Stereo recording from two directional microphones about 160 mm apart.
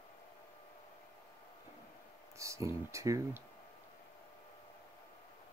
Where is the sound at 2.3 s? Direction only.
20° right (ahead or behind).